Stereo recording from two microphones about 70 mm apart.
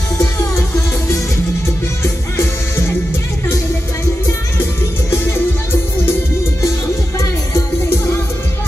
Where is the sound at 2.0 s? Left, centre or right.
Left.